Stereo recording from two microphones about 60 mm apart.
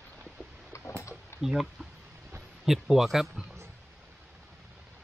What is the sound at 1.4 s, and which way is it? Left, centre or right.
Speech, centre.